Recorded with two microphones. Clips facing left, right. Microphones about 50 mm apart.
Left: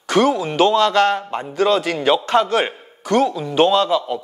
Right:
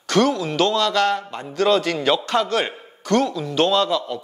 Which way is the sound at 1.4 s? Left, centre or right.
Centre.